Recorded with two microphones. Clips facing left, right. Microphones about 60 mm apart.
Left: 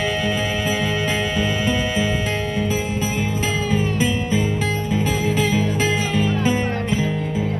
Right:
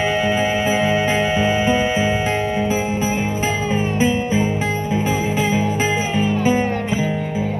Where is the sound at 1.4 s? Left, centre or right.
Centre.